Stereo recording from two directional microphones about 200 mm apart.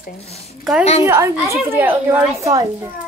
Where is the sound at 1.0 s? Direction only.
15° right (ahead or behind).